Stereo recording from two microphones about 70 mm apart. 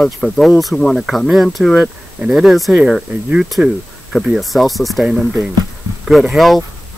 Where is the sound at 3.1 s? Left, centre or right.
Centre.